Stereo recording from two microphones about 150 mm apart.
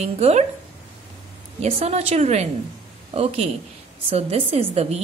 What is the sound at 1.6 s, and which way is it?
A woman's voice, 45° right (ahead or behind).